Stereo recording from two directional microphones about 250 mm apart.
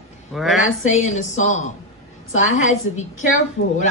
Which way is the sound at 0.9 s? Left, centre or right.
Left.